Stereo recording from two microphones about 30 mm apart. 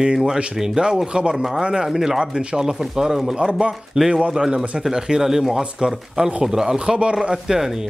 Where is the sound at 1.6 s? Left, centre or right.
Right.